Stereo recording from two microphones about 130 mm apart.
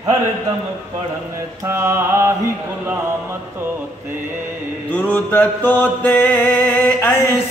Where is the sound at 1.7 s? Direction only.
20° right (ahead or behind).